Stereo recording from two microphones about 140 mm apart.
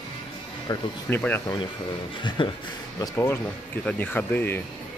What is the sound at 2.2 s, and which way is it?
Speech, 35° left (ahead or behind).